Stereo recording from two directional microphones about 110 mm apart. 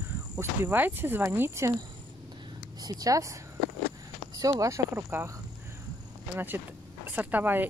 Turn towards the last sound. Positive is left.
turn(degrees=-15)  # may be behind; listen again after turning